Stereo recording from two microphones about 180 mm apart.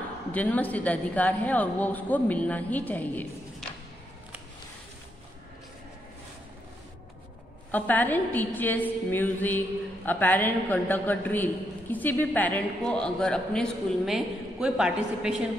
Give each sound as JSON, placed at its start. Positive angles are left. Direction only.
{"t": 0.3, "sound": "a man's voice", "side_deg": 10}
{"t": 7.7, "sound": "a man's voice", "side_deg": 10}